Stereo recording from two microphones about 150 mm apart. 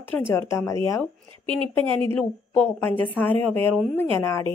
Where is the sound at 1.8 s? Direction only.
35° right (ahead or behind).